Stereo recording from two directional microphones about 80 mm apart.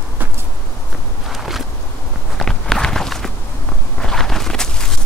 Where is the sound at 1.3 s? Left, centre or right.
Centre.